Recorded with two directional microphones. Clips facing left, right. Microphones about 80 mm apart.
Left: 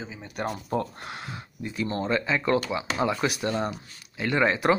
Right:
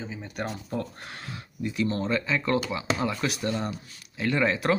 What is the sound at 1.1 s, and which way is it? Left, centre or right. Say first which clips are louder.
Speech: left 2 dB; left.